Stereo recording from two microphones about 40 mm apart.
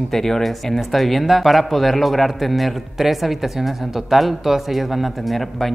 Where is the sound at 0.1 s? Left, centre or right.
Centre.